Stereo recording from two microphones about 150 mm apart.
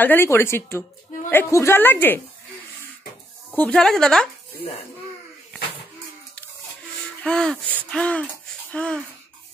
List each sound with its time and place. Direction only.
0.0 s a woman's voice: 15° left (ahead or behind)
3.5 s speech: 5° left (ahead or behind)
7.2 s a woman's voice: 5° left (ahead or behind)